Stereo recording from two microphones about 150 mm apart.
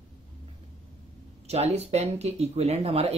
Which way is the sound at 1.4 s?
45° right (ahead or behind).